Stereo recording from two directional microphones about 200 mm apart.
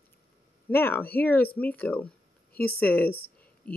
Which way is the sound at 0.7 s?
10° left (ahead or behind).